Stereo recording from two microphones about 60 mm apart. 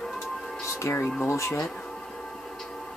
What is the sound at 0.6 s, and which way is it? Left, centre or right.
Music, left.